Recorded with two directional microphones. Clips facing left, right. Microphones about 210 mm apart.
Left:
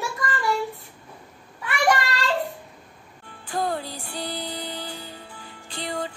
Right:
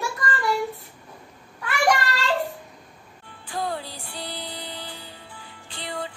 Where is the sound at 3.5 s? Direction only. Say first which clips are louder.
Left 3 dB; 45° left (ahead or behind).